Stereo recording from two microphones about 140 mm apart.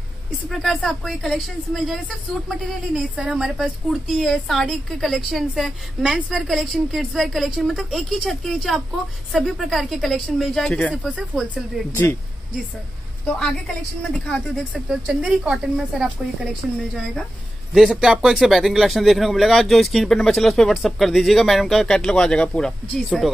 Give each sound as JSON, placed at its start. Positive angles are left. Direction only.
{"t": 0.5, "sound": "speech", "side_deg": 0}
{"t": 11.0, "sound": "speech", "side_deg": -10}
{"t": 11.9, "sound": "speech", "side_deg": 15}
{"t": 14.1, "sound": "speech", "side_deg": 5}